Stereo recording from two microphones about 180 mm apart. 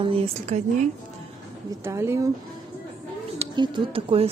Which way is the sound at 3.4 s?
30° right (ahead or behind).